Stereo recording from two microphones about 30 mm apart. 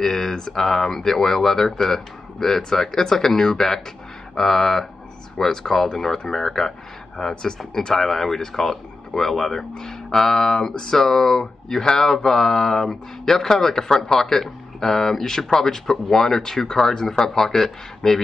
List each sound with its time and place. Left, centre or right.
0.0 s speech: centre
7.2 s speech: left